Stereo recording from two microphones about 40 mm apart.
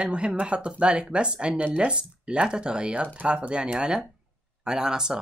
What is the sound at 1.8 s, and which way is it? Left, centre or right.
Speech, right.